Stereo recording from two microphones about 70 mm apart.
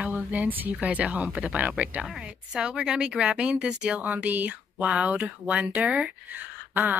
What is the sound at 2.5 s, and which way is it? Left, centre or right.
A woman's voice, centre.